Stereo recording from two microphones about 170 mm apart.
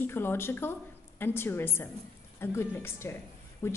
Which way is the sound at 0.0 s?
15° left (ahead or behind).